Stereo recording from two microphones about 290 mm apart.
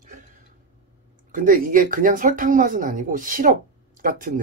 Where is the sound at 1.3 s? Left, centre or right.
Right.